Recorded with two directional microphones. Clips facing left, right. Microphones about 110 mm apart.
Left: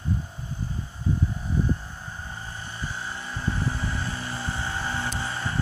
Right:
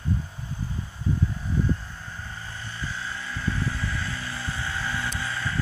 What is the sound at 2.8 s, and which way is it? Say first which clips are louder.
Vehicle: even; 20° left (ahead or behind).